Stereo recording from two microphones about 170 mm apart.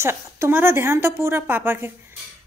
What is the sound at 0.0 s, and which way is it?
A woman's voice, 15° right (ahead or behind).